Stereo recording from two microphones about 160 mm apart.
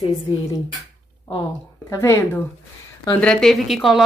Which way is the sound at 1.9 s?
15° left (ahead or behind).